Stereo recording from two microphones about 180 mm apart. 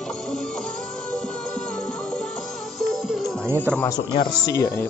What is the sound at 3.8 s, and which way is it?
Speech, 25° left (ahead or behind).